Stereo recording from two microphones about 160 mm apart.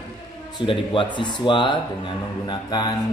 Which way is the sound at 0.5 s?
30° left (ahead or behind).